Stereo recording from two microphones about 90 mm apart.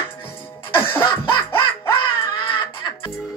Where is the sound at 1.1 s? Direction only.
55° left (ahead or behind).